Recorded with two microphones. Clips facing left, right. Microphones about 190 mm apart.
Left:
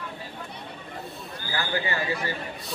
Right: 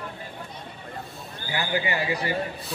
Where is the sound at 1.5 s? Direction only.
15° right (ahead or behind).